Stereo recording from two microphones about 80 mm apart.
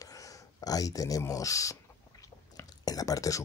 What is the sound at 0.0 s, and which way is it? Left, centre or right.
Speech, left.